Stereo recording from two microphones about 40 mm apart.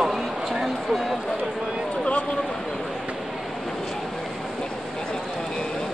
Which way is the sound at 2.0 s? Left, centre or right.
Left.